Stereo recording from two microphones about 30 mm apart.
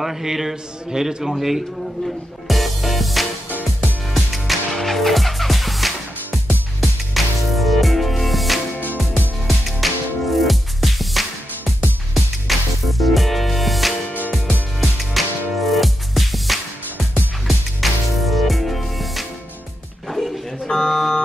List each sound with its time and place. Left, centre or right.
0.0 s a man's voice: centre
2.4 s music: centre
9.7 s music: centre
20.2 s a sound: left
20.6 s buzzer: centre